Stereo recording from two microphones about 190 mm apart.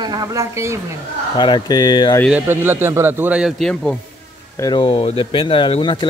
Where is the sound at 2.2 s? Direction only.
10° right (ahead or behind).